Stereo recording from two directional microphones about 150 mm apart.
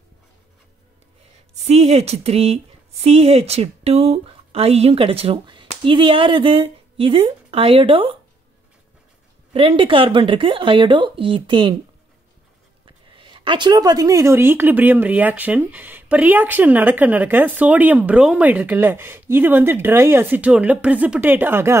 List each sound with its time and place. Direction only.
1.7 s speech: 45° right (ahead or behind)
9.5 s speech: 40° right (ahead or behind)
12.8 s a woman's voice: 35° right (ahead or behind); by 21.7 s 15° right (ahead or behind)